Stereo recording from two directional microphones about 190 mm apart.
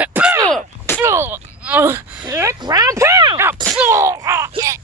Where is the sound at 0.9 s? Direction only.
15° right (ahead or behind).